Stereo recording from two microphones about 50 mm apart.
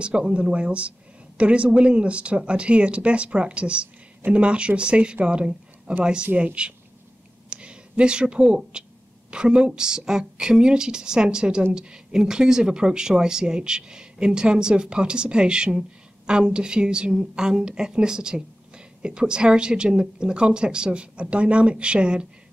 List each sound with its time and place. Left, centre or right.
0.0 s speech: right
7.4 s a sound: centre
9.3 s speech: centre